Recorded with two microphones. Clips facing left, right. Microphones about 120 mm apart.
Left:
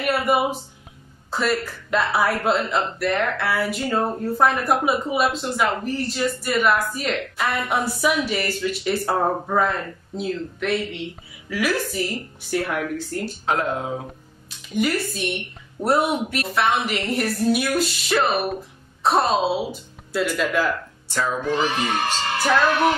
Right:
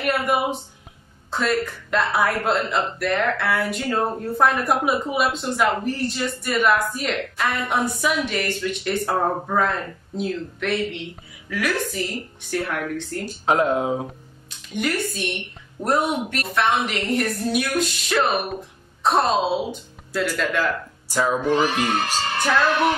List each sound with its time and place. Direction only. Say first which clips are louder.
0.0 s speech: left 1 dB; 5° left (ahead or behind)
13.2 s speech: right 5 dB; 15° right (ahead or behind)
14.7 s speech: left 2 dB; centre (ahead or behind)
21.1 s music: right 3 dB; 10° right (ahead or behind)